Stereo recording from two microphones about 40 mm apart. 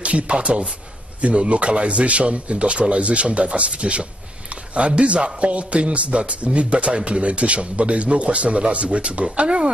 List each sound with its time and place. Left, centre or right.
0.0 s speech: right